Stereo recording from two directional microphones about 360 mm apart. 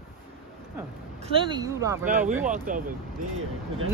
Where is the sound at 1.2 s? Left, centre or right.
Centre.